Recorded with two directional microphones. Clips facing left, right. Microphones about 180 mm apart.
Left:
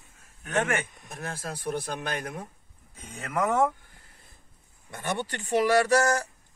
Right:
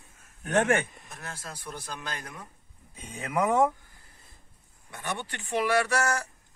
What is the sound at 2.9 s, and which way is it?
Speech, 15° right (ahead or behind).